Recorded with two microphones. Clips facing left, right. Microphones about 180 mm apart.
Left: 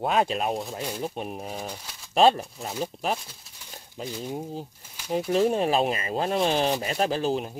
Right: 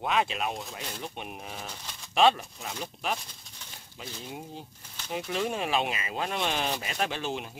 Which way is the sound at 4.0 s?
40° left (ahead or behind).